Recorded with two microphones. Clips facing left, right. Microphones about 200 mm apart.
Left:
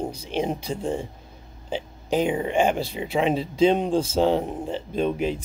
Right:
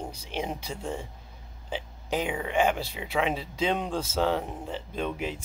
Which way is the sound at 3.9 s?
15° left (ahead or behind).